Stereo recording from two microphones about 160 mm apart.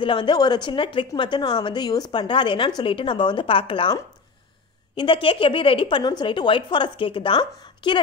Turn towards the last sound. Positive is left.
turn(degrees=30)  # may be behind; listen again after turning